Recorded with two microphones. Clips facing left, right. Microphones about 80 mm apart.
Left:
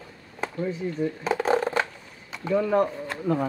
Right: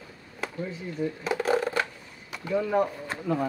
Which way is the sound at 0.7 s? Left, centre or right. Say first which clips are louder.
Left 4 dB; left.